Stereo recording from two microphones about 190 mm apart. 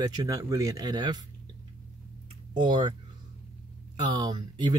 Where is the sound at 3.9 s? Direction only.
20° right (ahead or behind).